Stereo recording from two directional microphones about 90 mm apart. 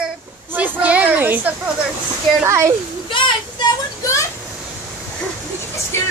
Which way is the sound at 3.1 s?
65° left (ahead or behind).